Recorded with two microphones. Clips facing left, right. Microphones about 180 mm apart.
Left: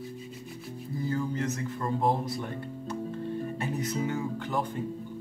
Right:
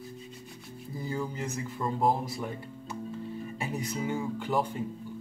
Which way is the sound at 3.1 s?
60° left (ahead or behind).